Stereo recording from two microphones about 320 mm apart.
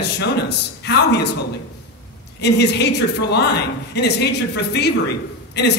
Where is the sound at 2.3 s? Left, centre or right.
Left.